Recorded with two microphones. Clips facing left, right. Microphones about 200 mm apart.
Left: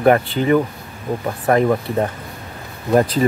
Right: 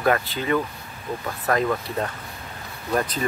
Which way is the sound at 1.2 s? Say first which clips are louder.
Left 7 dB; 30° left (ahead or behind).